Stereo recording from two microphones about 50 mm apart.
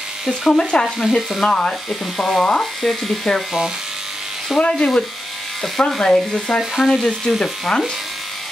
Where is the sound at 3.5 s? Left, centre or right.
Centre.